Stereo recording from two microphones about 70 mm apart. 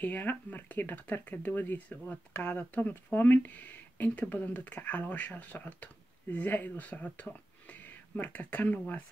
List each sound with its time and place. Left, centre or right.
0.0 s speech: left